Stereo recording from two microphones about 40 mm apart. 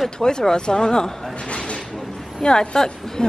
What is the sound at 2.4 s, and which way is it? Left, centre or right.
Speech, left.